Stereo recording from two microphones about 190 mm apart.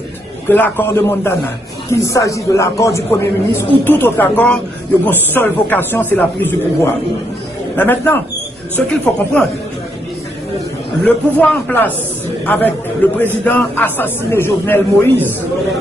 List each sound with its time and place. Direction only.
0.5 s a man's voice: 10° left (ahead or behind)
11.1 s a man's voice: 10° left (ahead or behind)